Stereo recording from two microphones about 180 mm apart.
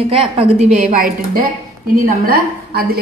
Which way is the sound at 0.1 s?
35° right (ahead or behind).